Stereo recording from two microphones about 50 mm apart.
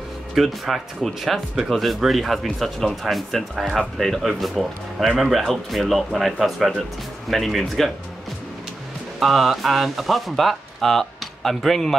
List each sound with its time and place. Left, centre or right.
0.3 s speech: centre
9.2 s speech: centre